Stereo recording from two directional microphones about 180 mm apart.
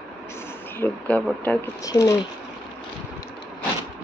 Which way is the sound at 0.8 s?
5° left (ahead or behind).